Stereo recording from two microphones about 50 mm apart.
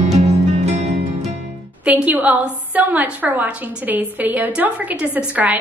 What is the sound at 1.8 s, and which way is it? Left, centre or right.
A woman's voice, right.